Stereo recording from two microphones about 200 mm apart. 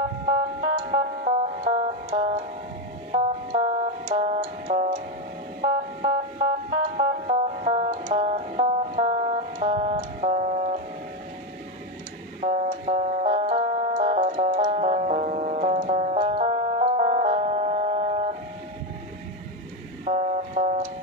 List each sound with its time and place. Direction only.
0.3 s music: 25° right (ahead or behind)
5.6 s music: 25° right (ahead or behind)
12.4 s music: 35° right (ahead or behind)
20.1 s a sound: 35° right (ahead or behind)